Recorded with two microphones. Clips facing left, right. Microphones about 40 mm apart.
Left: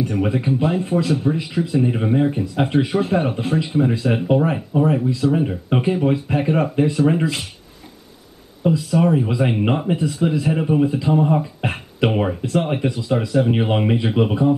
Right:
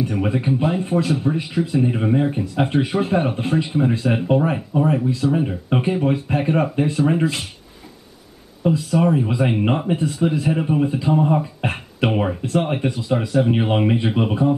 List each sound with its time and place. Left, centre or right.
0.0 s speech: centre
8.6 s speech: centre